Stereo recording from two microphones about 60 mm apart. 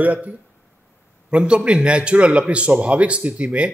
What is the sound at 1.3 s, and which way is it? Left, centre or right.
A man's voice, centre.